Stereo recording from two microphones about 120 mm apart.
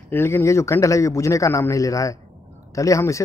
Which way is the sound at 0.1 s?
20° left (ahead or behind).